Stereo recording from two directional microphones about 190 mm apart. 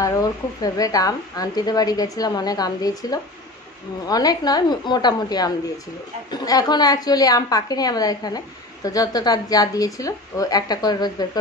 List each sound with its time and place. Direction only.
0.0 s speech: 20° left (ahead or behind)